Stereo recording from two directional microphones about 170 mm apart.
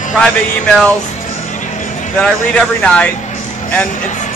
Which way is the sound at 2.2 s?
5° left (ahead or behind).